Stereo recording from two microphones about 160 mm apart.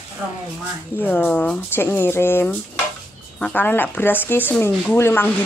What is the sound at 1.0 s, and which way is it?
A woman's voice, 10° left (ahead or behind).